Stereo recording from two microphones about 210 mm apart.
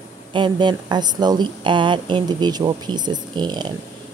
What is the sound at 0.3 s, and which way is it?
Speech, 20° right (ahead or behind).